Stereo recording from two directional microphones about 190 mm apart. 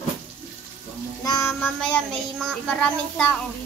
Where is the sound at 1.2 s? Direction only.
20° left (ahead or behind).